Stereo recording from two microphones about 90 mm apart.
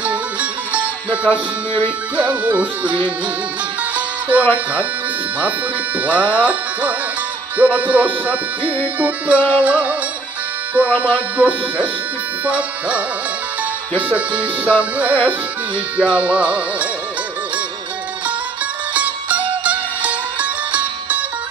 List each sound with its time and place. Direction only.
0.0 s music: 15° right (ahead or behind)
6.0 s music: 15° right (ahead or behind)
11.0 s music: 15° right (ahead or behind)
18.9 s music: 15° right (ahead or behind)